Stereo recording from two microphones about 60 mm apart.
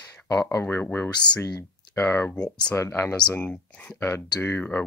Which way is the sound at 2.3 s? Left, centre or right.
Centre.